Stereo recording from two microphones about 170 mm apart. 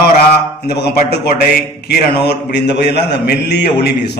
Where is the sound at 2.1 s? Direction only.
75° left (ahead or behind).